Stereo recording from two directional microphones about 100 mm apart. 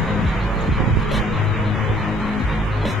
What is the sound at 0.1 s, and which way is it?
Music, centre (ahead or behind).